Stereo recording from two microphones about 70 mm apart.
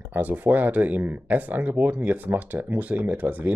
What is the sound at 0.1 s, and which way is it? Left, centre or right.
Speech, right.